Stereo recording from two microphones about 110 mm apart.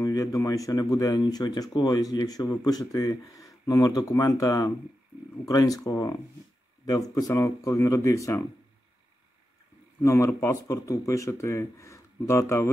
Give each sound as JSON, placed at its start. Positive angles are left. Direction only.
{"t": 0.0, "sound": "speech", "side_deg": 30}
{"t": 10.0, "sound": "speech", "side_deg": 25}